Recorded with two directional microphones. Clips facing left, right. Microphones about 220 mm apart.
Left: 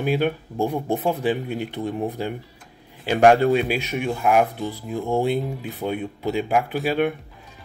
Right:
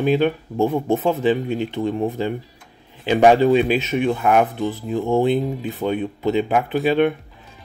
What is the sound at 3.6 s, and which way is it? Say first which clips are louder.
Speech: right 5 dB; 10° left (ahead or behind).